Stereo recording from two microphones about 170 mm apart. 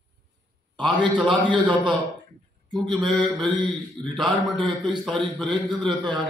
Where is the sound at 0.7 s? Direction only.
25° right (ahead or behind).